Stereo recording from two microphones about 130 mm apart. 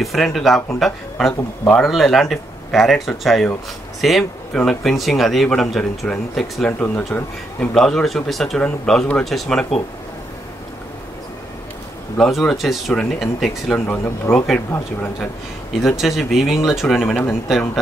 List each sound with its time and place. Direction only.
0.0 s speech: centre (ahead or behind)
12.2 s speech: centre (ahead or behind)
13.7 s speech: 15° left (ahead or behind)
15.8 s speech: centre (ahead or behind)
17.1 s speech: 15° left (ahead or behind)